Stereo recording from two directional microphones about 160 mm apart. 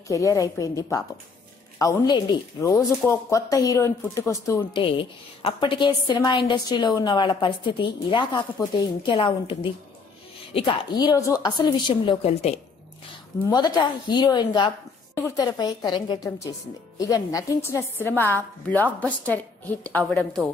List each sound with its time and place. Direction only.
0.1 s speech: 20° left (ahead or behind)
4.8 s a woman's voice: 35° left (ahead or behind)
13.5 s a woman's voice: 25° left (ahead or behind); by 20.4 s 5° left (ahead or behind)